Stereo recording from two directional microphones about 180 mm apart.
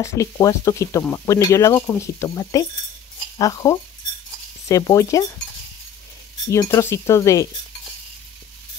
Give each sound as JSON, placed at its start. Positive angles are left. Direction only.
{"t": 0.0, "sound": "speech", "side_deg": 15}
{"t": 6.5, "sound": "speech", "side_deg": 15}